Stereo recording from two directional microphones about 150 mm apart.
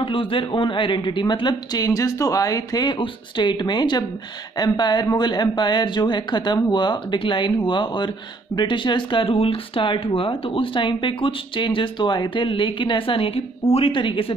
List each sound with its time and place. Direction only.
0.0 s speech: 35° left (ahead or behind)